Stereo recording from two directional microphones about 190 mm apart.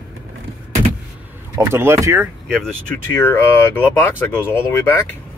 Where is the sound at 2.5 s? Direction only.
5° left (ahead or behind).